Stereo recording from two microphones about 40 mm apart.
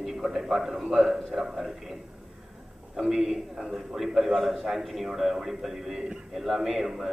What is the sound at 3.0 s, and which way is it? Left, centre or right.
A man's voice, centre.